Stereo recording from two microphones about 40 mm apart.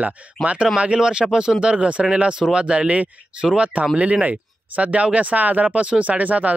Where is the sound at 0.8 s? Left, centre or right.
Right.